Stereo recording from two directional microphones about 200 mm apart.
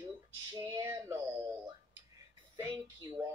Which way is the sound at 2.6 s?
20° right (ahead or behind).